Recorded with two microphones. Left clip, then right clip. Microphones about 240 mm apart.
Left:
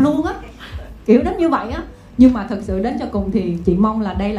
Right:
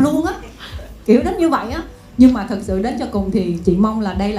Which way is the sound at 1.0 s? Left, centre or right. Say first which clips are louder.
Even; right.